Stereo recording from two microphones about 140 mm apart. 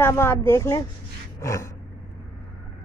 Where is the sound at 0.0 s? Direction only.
15° left (ahead or behind).